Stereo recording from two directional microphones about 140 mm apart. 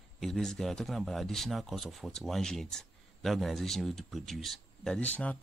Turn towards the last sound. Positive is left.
turn(degrees=10)  # may be behind; listen again after turning